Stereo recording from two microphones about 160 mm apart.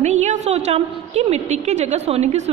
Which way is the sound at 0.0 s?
45° right (ahead or behind).